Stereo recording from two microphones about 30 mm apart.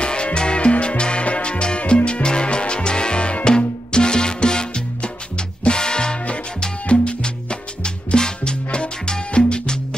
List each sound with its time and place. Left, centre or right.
0.0 s music: left
7.8 s music: left